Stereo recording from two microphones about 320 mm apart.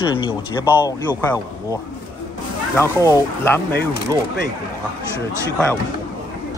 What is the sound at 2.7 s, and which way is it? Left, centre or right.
Speech, centre.